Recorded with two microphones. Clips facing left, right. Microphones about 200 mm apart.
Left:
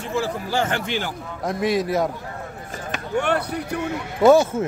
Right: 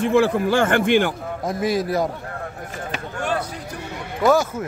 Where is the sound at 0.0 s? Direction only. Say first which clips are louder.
Right 8 dB; 60° right (ahead or behind).